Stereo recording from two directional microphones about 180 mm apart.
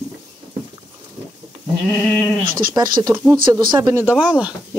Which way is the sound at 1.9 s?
10° left (ahead or behind).